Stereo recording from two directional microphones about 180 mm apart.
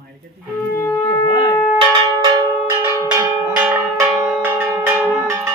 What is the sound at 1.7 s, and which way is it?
Cowbell, 25° right (ahead or behind).